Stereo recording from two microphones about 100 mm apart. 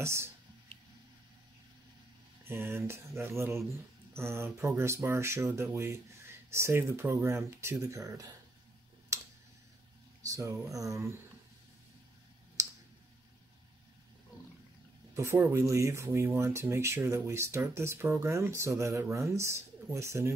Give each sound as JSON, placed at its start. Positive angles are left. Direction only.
{"t": 0.0, "sound": "speech", "side_deg": -25}
{"t": 2.4, "sound": "speech", "side_deg": -25}
{"t": 9.1, "sound": "a sound", "side_deg": -35}
{"t": 10.2, "sound": "speech", "side_deg": -35}
{"t": 12.6, "sound": "clicking", "side_deg": -30}
{"t": 15.1, "sound": "speech", "side_deg": -25}